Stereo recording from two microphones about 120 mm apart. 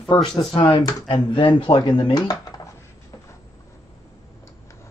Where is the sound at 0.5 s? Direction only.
45° left (ahead or behind).